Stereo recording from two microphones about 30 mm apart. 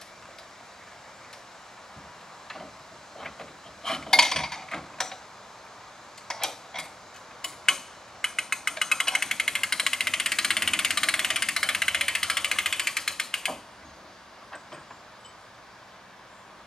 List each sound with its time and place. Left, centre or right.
2.4 s a sound: centre
6.2 s tick-tock: centre
7.4 s ratchet: centre